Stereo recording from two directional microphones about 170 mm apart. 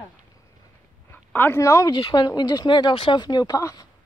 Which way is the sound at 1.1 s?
15° left (ahead or behind).